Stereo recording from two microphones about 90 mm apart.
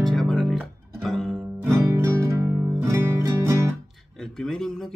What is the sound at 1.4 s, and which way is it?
Music, 25° right (ahead or behind).